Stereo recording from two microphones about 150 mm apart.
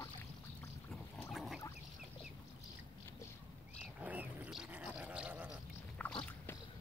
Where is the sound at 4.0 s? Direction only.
10° right (ahead or behind).